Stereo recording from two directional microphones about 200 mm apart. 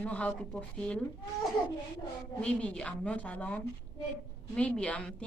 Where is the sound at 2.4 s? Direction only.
5° left (ahead or behind).